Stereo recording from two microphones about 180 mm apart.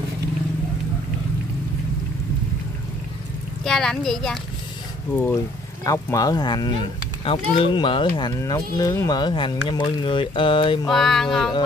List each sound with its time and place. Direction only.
3.6 s speech: 5° left (ahead or behind); by 10.9 s 25° left (ahead or behind)
10.9 s speech: centre (ahead or behind)